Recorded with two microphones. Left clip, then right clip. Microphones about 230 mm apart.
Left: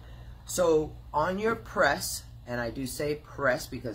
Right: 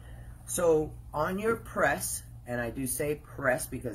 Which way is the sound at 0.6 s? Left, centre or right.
Centre.